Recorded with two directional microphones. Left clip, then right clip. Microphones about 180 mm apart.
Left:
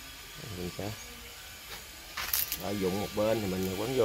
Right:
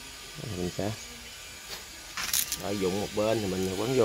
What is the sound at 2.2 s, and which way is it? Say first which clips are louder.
Speech: right 4 dB; 25° right (ahead or behind).